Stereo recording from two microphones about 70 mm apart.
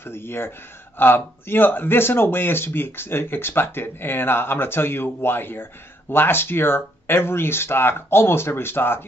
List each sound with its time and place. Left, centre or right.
0.0 s speech: left